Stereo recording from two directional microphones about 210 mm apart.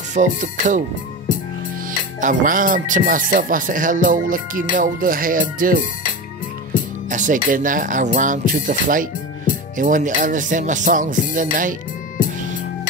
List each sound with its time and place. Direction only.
0.1 s speech: 35° right (ahead or behind)
1.9 s speech: 40° right (ahead or behind)
7.1 s speech: 35° right (ahead or behind)